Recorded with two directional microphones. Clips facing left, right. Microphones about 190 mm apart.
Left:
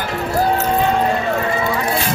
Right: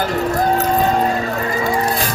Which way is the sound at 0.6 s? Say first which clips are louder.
Right 1 dB; 40° right (ahead or behind).